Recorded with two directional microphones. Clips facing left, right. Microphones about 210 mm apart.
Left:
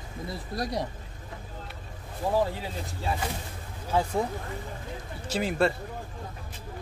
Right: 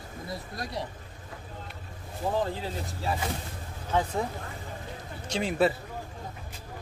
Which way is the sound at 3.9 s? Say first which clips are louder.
Left 2 dB; 10° left (ahead or behind).